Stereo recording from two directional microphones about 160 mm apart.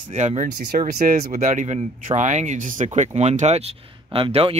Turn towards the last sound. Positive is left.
turn(degrees=-35)  # may be behind; listen again after turning